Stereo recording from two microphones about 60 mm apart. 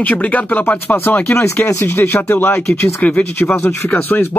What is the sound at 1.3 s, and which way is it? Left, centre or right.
Speech, left.